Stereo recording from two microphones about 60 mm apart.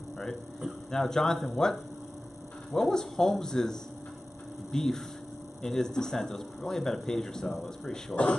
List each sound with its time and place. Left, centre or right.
0.9 s speech: centre
4.7 s speech: centre